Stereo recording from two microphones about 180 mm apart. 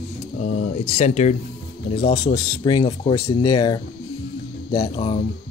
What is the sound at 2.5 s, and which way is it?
Speech, 25° left (ahead or behind).